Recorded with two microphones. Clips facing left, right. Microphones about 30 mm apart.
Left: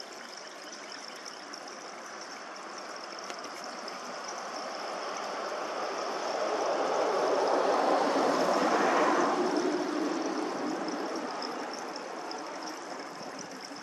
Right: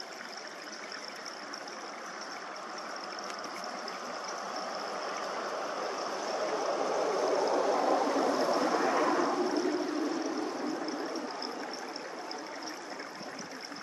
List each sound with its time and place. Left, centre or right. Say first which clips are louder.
4.5 s vehicle: even; centre
5.2 s a sound: even; centre; by 7.5 s left
7.5 s vehicle: left 2 dB; left